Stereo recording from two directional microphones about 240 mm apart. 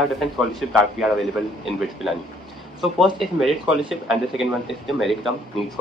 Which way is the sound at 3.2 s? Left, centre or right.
Centre.